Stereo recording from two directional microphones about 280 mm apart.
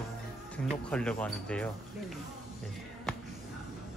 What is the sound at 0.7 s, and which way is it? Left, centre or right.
Speech, centre.